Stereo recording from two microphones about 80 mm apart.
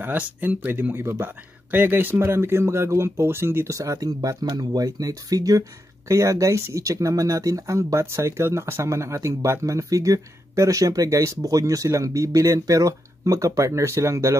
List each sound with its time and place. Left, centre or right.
0.0 s speech: right